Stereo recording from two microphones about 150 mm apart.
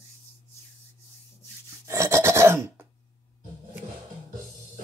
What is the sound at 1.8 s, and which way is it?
Filing, 20° right (ahead or behind).